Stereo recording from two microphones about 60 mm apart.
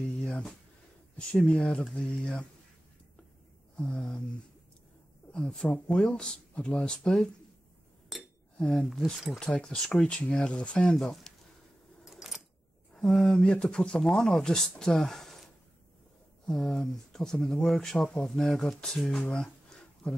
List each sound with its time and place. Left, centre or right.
0.2 s a sound: left
1.1 s speech: centre
3.7 s speech: centre
5.3 s a woman's voice: centre
8.1 s chink: centre
8.5 s speech: centre
11.0 s speech: centre
12.0 s keys jangling: centre
12.9 s speech: centre
13.5 s speech: centre
16.4 s speech: centre